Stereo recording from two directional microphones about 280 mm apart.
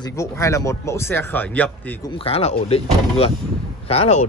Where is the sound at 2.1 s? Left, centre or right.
Left.